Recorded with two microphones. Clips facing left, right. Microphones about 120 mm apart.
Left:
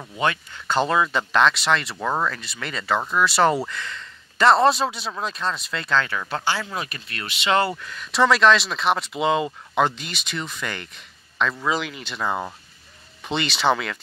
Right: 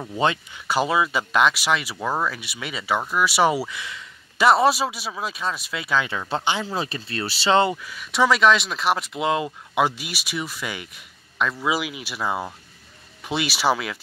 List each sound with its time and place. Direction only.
0.1 s speech: 25° right (ahead or behind)
0.5 s speech: 10° right (ahead or behind)
6.0 s speech: 25° right (ahead or behind)
7.7 s speech: 5° right (ahead or behind)